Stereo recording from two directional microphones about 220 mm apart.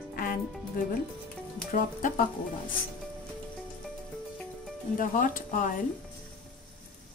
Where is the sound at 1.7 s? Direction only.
35° left (ahead or behind).